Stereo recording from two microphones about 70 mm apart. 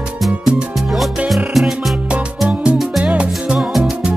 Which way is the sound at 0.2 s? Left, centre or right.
Centre.